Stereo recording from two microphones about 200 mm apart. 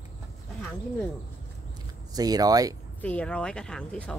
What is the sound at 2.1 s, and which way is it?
Speech, 20° right (ahead or behind).